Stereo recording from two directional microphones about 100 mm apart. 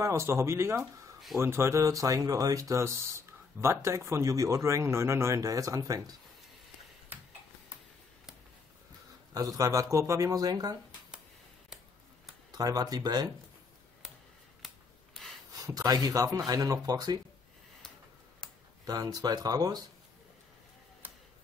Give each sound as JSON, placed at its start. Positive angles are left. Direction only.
{"t": 0.0, "sound": "speech", "side_deg": -30}
{"t": 9.3, "sound": "speech", "side_deg": -35}
{"t": 12.4, "sound": "speech", "side_deg": -40}
{"t": 15.2, "sound": "a sound", "side_deg": 5}
{"t": 15.5, "sound": "speech", "side_deg": -35}
{"t": 18.9, "sound": "speech", "side_deg": -35}